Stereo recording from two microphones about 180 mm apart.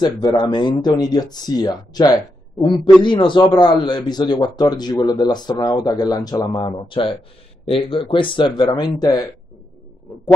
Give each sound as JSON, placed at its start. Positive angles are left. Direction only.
{"t": 0.0, "sound": "a man's voice", "side_deg": 25}